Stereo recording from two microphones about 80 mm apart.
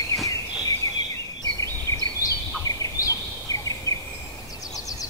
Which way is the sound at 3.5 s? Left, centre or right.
Left.